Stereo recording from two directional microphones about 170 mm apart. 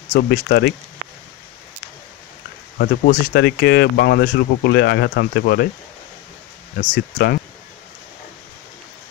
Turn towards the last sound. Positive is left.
turn(degrees=65)  # may be behind; listen again after turning